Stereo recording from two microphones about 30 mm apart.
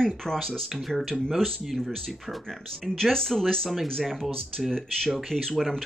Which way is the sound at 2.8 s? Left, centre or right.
Centre.